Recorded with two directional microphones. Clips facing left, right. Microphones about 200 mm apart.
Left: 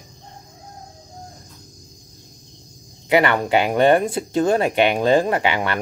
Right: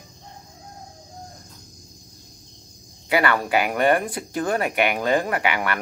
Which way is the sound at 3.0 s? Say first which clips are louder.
Left 4 dB; 20° left (ahead or behind).